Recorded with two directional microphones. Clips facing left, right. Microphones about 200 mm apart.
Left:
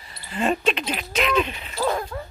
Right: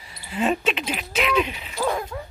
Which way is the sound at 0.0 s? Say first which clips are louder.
Right 1 dB; 10° right (ahead or behind).